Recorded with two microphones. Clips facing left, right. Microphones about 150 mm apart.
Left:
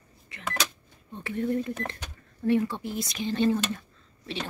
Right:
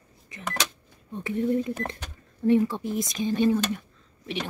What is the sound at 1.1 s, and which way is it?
Speech, 20° right (ahead or behind).